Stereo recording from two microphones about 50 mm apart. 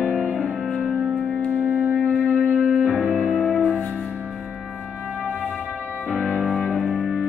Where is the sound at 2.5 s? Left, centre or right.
Right.